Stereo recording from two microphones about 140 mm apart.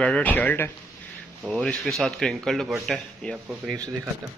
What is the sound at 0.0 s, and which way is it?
A man's voice, 10° left (ahead or behind).